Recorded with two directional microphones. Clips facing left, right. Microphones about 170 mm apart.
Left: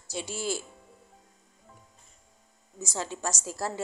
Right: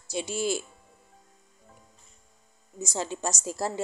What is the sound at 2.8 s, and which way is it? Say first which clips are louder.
Speech: right 3 dB; 20° right (ahead or behind).